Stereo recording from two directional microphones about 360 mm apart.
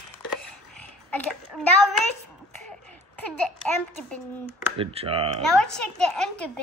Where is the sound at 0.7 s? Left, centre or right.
Centre.